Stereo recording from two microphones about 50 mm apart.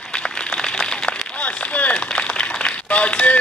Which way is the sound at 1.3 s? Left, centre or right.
Left.